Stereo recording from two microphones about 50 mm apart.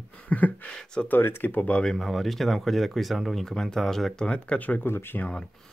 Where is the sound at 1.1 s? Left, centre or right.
Left.